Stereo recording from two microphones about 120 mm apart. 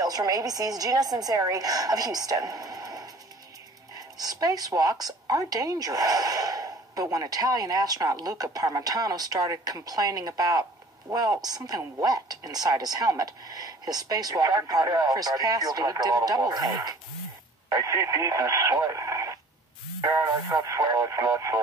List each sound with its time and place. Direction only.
0.0 s speech: 30° right (ahead or behind)